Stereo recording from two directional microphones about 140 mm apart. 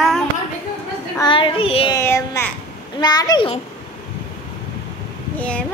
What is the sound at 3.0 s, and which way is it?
Speech, 30° left (ahead or behind).